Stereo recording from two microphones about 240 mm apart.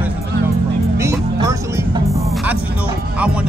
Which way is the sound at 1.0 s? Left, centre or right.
Centre.